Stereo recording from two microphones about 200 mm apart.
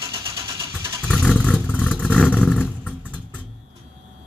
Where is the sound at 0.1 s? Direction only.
20° right (ahead or behind).